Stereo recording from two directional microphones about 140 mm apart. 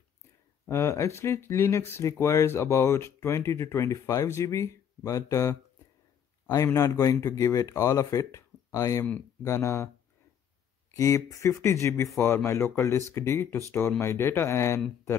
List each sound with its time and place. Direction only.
0.7 s speech: 20° left (ahead or behind)
10.9 s speech: 20° left (ahead or behind)